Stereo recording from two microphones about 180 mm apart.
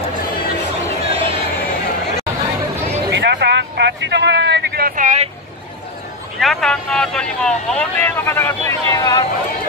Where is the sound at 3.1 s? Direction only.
75° right (ahead or behind); by 5.1 s 55° right (ahead or behind).